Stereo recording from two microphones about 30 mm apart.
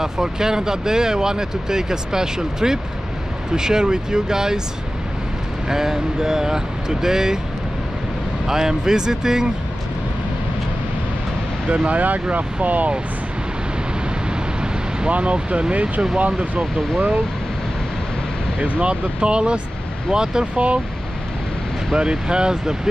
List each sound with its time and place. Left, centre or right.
0.0 s speech: centre
5.7 s speech: centre
8.5 s speech: centre
11.7 s speech: right
12.0 s speech: right
15.0 s speech: right
15.3 s speech: right
18.6 s speech: right
20.1 s speech: right
20.5 s speech: right
21.9 s speech: right